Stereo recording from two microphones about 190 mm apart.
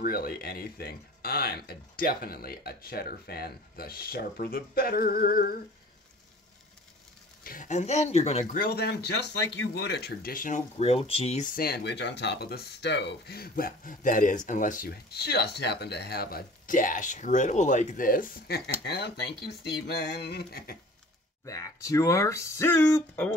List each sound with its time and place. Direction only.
0.0 s speech: 50° left (ahead or behind)
7.4 s speech: 45° left (ahead or behind)
8.5 s speech: 55° left (ahead or behind)
18.9 s speech: 60° left (ahead or behind)
21.5 s speech: 15° left (ahead or behind)